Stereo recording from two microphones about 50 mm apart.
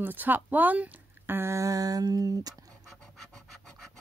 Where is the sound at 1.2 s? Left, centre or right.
Right.